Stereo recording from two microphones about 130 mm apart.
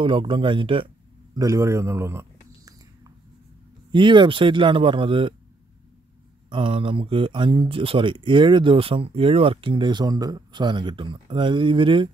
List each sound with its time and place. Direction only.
0.0 s speech: 40° right (ahead or behind)
1.3 s a sound: 25° right (ahead or behind)
3.9 s speech: 40° right (ahead or behind)
6.5 s speech: 45° right (ahead or behind)